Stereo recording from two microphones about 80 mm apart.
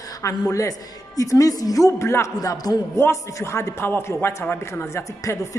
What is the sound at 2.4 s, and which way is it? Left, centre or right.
Speech, left.